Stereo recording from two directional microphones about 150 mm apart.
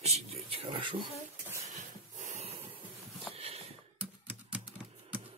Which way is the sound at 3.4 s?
40° right (ahead or behind).